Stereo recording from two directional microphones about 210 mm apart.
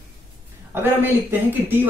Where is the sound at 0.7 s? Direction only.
10° right (ahead or behind).